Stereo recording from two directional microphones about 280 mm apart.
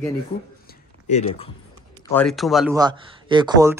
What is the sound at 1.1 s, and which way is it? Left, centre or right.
Speech, left.